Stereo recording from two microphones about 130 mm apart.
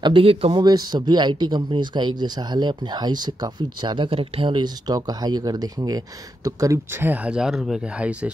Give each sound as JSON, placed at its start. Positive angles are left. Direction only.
{"t": 0.0, "sound": "speech", "side_deg": -45}
{"t": 0.6, "sound": "speech", "side_deg": -30}